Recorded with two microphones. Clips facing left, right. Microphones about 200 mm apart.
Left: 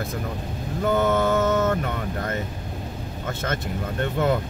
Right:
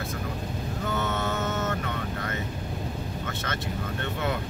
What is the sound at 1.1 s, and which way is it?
Speech, 50° left (ahead or behind).